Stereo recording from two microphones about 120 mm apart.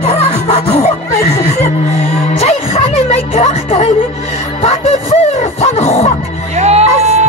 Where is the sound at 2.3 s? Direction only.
65° left (ahead or behind).